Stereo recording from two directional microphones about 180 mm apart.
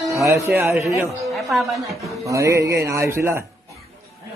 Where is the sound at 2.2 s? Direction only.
15° right (ahead or behind).